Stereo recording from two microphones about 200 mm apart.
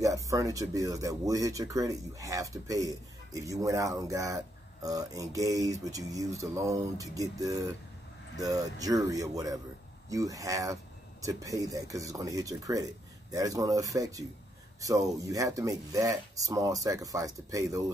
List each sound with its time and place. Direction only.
0.0 s speech: 15° right (ahead or behind)